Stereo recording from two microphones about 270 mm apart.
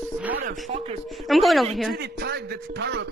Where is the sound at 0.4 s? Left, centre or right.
Right.